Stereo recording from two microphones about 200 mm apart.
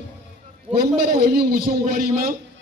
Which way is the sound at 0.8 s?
50° right (ahead or behind).